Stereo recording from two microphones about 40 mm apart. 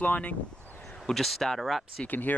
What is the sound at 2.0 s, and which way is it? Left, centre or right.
Speech, left.